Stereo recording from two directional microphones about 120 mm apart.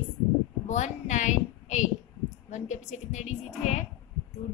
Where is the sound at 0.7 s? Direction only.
90° left.